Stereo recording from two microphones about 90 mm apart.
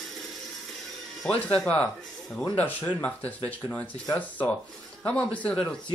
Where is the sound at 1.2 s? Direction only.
10° left (ahead or behind).